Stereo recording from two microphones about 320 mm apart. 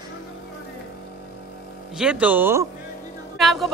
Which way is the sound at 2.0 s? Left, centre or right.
Centre.